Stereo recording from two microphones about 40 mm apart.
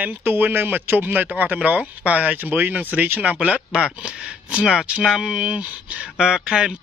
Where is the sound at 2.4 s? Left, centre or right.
Right.